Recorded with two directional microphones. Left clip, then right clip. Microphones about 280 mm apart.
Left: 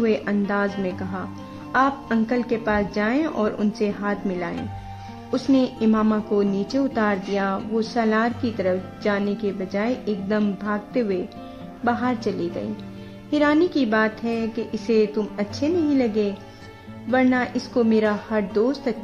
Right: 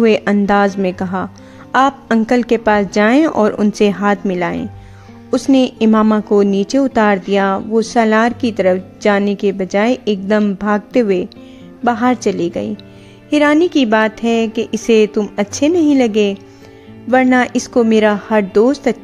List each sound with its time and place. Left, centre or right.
0.0 s a woman's voice: right